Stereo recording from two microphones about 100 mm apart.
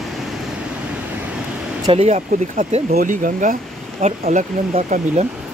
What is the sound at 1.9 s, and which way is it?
Speech, 85° right.